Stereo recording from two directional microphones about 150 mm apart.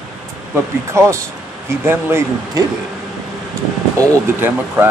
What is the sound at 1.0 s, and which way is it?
Speech, 20° right (ahead or behind).